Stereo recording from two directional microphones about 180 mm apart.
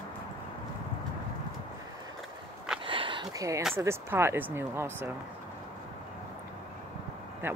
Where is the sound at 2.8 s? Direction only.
30° right (ahead or behind).